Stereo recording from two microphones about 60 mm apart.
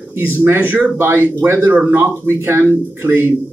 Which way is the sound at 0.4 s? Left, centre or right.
Right.